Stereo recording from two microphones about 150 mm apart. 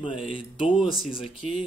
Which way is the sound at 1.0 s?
5° right (ahead or behind).